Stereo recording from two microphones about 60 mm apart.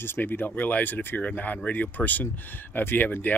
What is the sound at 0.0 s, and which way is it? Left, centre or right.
Speech, left.